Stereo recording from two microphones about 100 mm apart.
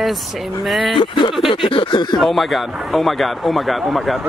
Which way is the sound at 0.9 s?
55° left (ahead or behind).